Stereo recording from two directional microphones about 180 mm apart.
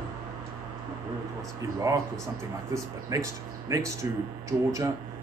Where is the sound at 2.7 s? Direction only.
15° right (ahead or behind).